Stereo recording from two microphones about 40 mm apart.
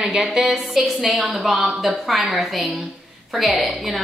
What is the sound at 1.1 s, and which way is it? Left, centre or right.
Speech, right.